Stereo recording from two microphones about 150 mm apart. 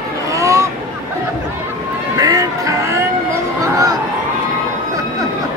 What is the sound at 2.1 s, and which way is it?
Music, 25° right (ahead or behind).